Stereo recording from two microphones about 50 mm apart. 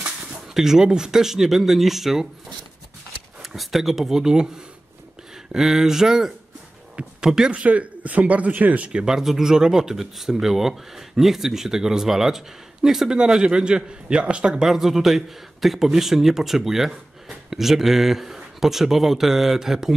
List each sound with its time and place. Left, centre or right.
0.6 s speech: centre
3.4 s speech: centre
7.5 s speech: right
9.0 s speech: centre
13.2 s speech: centre
14.7 s a man's voice: centre